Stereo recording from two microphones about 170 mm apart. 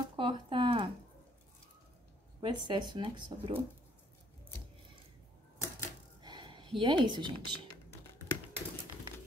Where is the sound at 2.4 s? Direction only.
25° right (ahead or behind).